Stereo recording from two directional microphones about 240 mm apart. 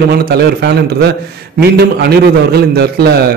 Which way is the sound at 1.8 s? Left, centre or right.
Right.